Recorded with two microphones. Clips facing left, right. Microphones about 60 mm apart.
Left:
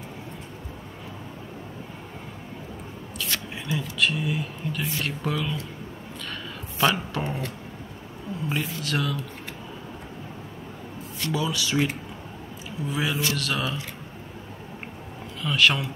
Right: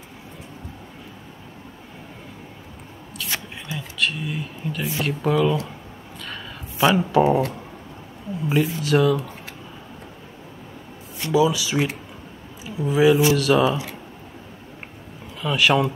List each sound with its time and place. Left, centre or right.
3.3 s a sound: centre
3.7 s speech: centre
6.8 s speech: centre
11.3 s speech: centre
15.4 s speech: centre